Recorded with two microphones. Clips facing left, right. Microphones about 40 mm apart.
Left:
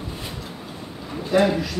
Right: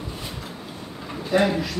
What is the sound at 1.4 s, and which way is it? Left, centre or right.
Speech, centre.